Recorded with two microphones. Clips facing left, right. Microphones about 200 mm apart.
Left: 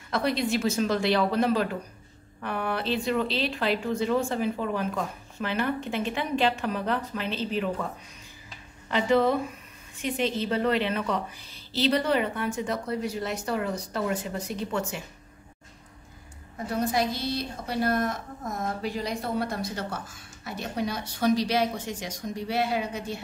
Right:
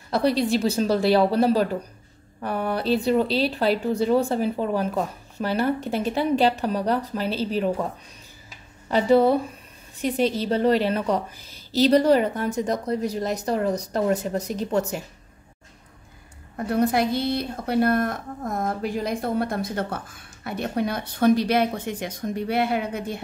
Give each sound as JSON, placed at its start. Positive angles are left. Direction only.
{"t": 0.1, "sound": "speech", "side_deg": -35}
{"t": 8.9, "sound": "speech", "side_deg": -35}
{"t": 16.5, "sound": "a woman's voice", "side_deg": -60}